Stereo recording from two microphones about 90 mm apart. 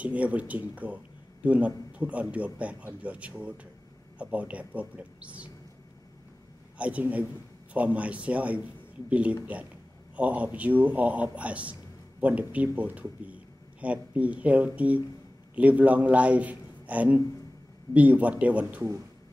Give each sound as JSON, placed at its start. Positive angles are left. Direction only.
{"t": 0.0, "sound": "speech", "side_deg": -15}
{"t": 6.8, "sound": "a man's voice", "side_deg": -15}